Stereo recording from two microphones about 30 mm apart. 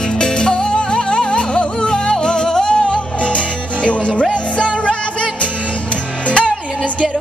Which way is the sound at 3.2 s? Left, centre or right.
Left.